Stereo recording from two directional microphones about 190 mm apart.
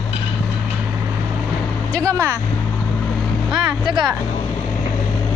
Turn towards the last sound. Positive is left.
turn(degrees=-25)  # may be behind; listen again after turning